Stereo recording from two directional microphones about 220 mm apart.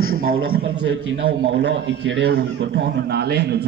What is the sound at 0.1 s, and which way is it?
A man's voice, 45° right (ahead or behind).